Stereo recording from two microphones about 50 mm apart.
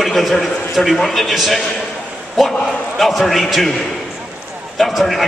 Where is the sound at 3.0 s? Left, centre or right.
Centre.